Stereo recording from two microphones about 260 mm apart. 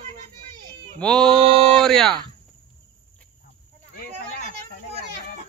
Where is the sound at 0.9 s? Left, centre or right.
Centre.